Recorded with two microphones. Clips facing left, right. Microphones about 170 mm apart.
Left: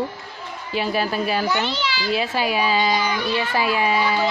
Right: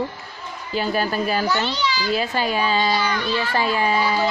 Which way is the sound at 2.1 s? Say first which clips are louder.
Left 2 dB; 5° left (ahead or behind).